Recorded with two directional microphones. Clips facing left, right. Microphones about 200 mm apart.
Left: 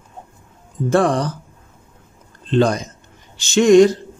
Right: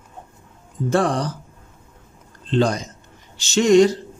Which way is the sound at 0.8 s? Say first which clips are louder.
Left 3 dB; 55° left (ahead or behind).